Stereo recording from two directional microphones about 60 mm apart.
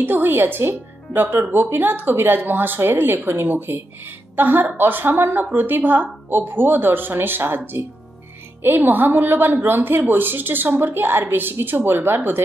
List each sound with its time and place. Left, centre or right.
0.0 s speech: right